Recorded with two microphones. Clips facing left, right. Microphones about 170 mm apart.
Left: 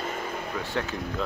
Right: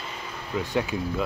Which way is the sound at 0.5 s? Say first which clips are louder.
Right 6 dB; 15° right (ahead or behind).